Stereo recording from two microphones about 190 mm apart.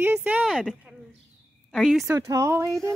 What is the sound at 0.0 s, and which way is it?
Speech, 10° right (ahead or behind).